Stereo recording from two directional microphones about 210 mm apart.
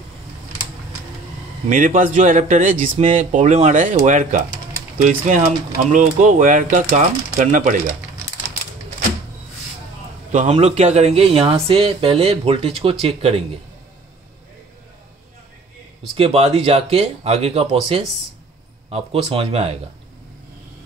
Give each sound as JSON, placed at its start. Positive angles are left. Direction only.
{"t": 1.7, "sound": "speech", "side_deg": -40}
{"t": 10.3, "sound": "speech", "side_deg": -30}
{"t": 16.2, "sound": "speech", "side_deg": -30}